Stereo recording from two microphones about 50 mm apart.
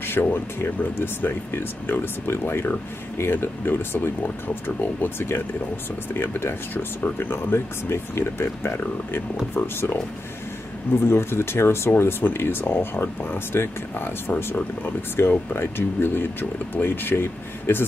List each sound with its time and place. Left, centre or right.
0.0 s speech: left
11.1 s speech: left